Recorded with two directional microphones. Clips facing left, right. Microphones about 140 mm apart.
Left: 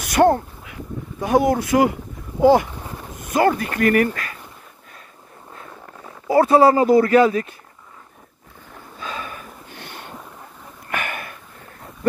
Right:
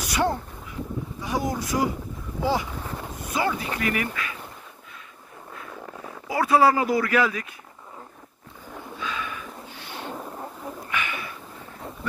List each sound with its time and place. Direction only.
0.0 s quack: 55° left (ahead or behind)
1.2 s speech: 60° left (ahead or behind)
6.2 s speech: 30° left (ahead or behind)
8.9 s a sound: 40° left (ahead or behind)
10.9 s sniff: 50° left (ahead or behind)